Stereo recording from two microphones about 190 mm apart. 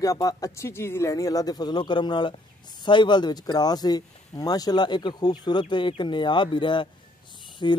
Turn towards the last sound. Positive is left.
turn(degrees=25)  # may be behind; listen again after turning